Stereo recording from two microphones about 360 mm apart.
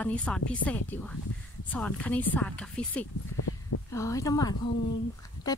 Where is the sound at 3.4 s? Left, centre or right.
Left.